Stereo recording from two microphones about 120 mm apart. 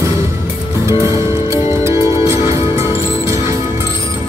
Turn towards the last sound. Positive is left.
turn(degrees=-20)  # may be behind; listen again after turning